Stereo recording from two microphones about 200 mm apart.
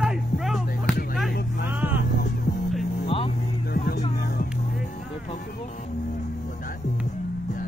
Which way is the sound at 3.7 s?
55° left (ahead or behind).